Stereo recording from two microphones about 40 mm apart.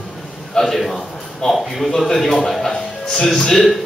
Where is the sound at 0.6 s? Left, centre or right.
Centre.